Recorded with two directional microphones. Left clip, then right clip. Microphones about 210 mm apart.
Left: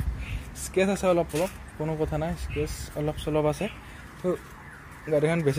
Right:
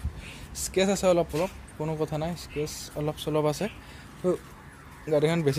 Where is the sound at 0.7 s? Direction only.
15° right (ahead or behind).